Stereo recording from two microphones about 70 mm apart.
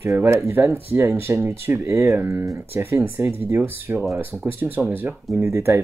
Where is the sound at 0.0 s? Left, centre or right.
Right.